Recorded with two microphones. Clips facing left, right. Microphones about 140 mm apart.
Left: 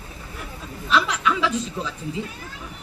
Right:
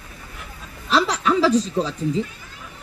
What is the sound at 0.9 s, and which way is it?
A woman's voice, 35° right (ahead or behind).